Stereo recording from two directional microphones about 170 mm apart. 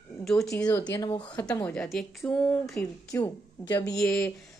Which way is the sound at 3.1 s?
20° left (ahead or behind).